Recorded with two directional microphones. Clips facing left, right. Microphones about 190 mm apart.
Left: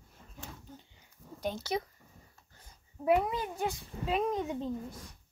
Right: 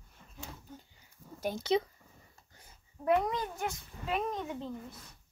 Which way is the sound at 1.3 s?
5° right (ahead or behind).